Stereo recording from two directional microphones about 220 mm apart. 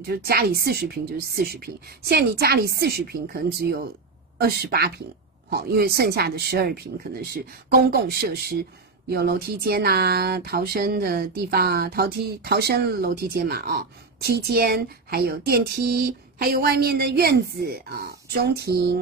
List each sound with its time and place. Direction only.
0.1 s speech: 45° right (ahead or behind)